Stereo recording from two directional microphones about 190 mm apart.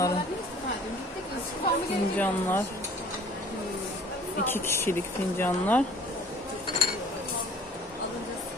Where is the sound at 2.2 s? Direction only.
10° left (ahead or behind).